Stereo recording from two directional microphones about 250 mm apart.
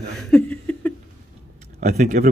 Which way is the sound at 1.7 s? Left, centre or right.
Right.